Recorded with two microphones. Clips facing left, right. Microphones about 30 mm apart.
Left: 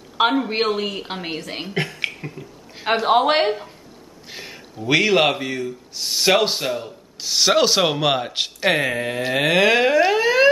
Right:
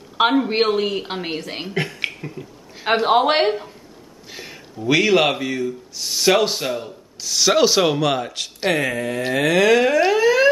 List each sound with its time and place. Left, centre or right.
0.2 s speech: centre
4.3 s a sound: centre
4.8 s a man's voice: centre
7.2 s speech: left
7.5 s a man's voice: centre
8.0 s a man's voice: centre
8.6 s a sound: left
9.9 s theremin: centre